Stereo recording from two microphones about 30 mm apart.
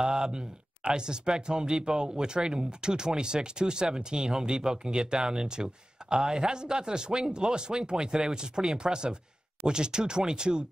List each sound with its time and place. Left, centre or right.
0.0 s speech: right